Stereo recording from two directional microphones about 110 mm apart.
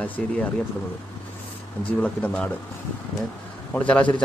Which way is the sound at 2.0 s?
10° left (ahead or behind).